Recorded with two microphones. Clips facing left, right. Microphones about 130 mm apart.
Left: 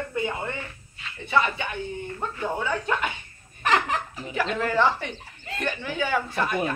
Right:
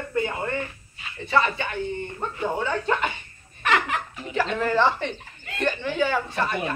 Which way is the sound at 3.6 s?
35° left (ahead or behind).